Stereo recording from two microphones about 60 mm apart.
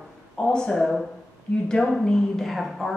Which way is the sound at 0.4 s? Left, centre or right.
Centre.